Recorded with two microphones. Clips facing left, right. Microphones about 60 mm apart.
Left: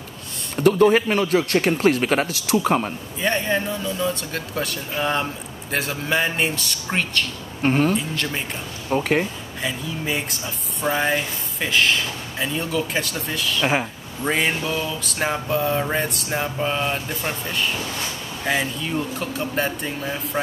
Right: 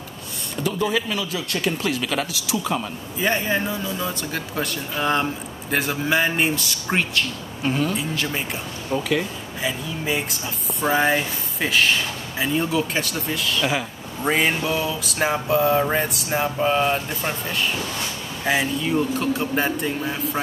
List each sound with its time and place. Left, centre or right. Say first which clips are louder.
0.6 s speech: left 8 dB; left
3.2 s speech: even; centre
7.6 s speech: left 4 dB; left
7.9 s speech: left 1 dB; centre
8.9 s speech: left 3 dB; left
9.6 s speech: even; centre